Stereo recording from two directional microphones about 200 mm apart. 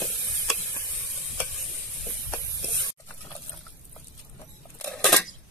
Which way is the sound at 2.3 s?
15° left (ahead or behind).